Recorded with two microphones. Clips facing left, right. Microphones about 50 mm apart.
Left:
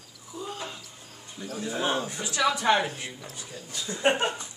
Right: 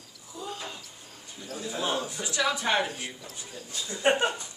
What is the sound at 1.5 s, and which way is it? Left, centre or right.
Speech, left.